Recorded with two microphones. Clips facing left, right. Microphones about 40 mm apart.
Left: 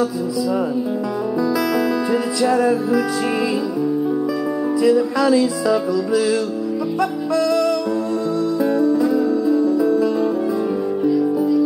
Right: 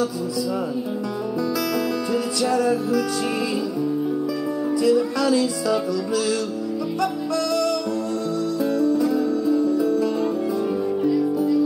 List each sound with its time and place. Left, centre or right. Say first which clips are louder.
2.4 s music: left 4 dB; centre
4.8 s music: left 4 dB; centre
8.7 s music: left 2 dB; centre